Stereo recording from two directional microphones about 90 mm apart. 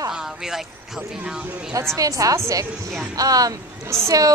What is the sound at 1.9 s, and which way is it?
A woman's voice, 40° right (ahead or behind).